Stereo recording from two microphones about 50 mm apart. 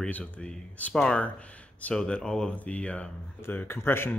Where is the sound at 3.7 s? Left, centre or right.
Left.